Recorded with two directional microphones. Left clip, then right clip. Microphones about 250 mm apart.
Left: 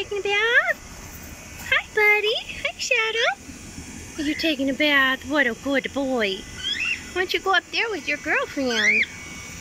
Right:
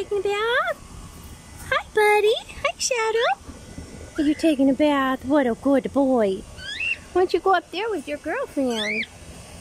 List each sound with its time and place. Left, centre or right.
0.0 s speech: centre
1.7 s a sound: centre
4.2 s speech: centre